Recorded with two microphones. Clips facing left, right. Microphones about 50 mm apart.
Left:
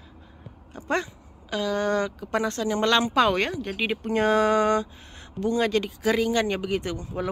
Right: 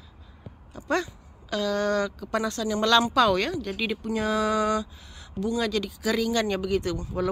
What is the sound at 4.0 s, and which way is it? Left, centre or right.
Speech, left.